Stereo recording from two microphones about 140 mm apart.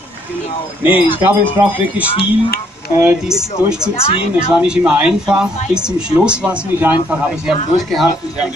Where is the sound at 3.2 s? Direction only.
5° right (ahead or behind).